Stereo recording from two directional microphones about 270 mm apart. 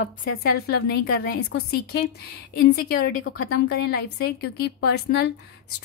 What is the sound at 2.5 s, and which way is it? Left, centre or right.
Speech, left.